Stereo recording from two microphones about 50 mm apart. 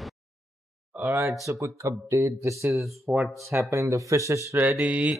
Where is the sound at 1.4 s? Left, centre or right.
Right.